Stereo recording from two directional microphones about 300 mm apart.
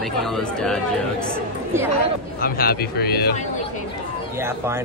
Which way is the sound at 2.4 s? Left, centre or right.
Left.